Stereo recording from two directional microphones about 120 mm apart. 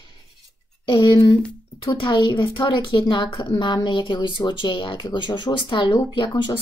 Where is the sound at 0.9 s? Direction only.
40° left (ahead or behind).